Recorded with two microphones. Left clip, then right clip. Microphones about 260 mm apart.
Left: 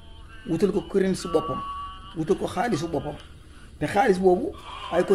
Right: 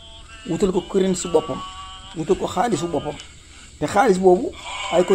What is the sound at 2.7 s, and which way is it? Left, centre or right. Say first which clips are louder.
Speech: right 4 dB; right.